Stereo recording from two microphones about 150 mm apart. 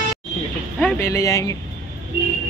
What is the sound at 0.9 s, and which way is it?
Speech, 20° left (ahead or behind).